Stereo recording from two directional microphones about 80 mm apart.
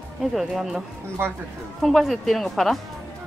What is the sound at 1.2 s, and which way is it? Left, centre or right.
Speech, right.